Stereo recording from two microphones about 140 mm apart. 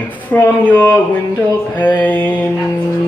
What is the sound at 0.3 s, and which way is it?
Music, 10° left (ahead or behind).